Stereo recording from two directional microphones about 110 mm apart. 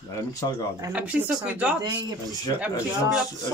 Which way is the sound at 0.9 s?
10° right (ahead or behind).